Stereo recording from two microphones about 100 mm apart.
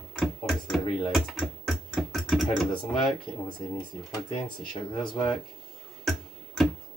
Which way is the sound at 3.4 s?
50° left (ahead or behind).